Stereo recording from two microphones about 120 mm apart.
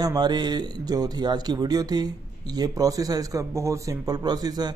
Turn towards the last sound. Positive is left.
turn(degrees=-35)  # may be behind; listen again after turning